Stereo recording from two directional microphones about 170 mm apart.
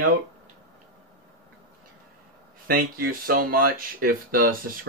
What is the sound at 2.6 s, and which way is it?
Speech, 60° right (ahead or behind).